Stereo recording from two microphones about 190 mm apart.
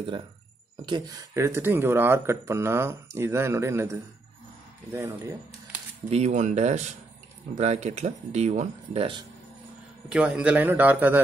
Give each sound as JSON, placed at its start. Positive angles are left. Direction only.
{"t": 0.8, "sound": "speech", "side_deg": -20}
{"t": 4.9, "sound": "speech", "side_deg": -15}
{"t": 6.0, "sound": "speech", "side_deg": -35}
{"t": 10.0, "sound": "speech", "side_deg": -5}